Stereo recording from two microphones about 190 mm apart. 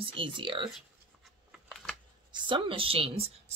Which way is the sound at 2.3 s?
25° right (ahead or behind).